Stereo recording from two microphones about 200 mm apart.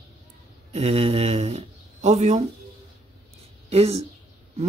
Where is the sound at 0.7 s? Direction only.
30° right (ahead or behind).